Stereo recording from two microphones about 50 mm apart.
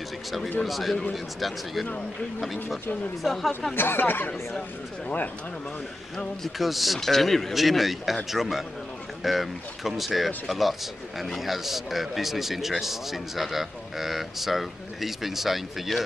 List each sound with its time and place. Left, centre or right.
0.7 s speech: centre
3.7 s speech: left
6.6 s speech: centre